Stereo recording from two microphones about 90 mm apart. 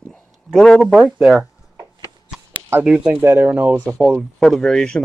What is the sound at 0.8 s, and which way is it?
Speech, 5° right (ahead or behind).